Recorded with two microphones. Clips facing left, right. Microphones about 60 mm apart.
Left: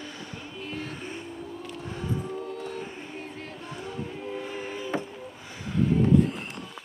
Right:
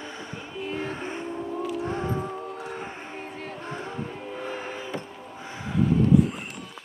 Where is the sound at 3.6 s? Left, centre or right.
Right.